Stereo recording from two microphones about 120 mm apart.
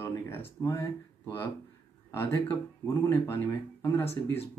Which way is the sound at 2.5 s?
20° left (ahead or behind).